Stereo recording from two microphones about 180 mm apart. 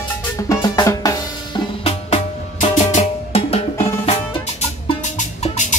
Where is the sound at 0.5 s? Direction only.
20° left (ahead or behind).